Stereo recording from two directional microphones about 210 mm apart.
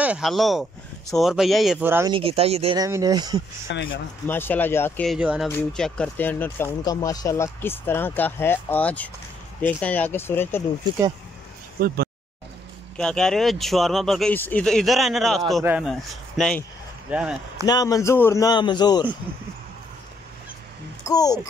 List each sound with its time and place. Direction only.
0.0 s speech: 5° right (ahead or behind)
2.1 s speech: 25° right (ahead or behind)
3.7 s speech: 55° left (ahead or behind)
4.3 s speech: 10° left (ahead or behind)
11.8 s speech: 45° right (ahead or behind)
12.9 s speech: 5° left (ahead or behind)
17.6 s speech: 15° left (ahead or behind)
21.0 s a child's voice: 15° left (ahead or behind)